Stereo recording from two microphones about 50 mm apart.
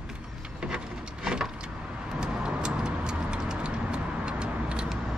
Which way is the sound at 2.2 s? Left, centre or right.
Centre.